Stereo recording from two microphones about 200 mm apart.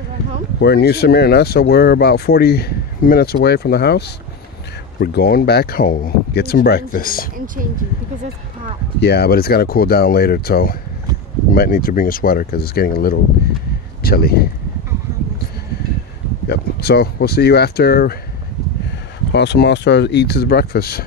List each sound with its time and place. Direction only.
0.6 s speech: 55° left (ahead or behind)
7.3 s speech: 45° right (ahead or behind)
9.0 s speech: 55° left (ahead or behind)
16.4 s speech: 55° left (ahead or behind)
19.3 s speech: 60° left (ahead or behind)